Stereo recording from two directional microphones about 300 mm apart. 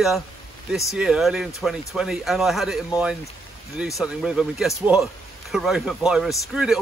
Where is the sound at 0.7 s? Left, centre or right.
Centre.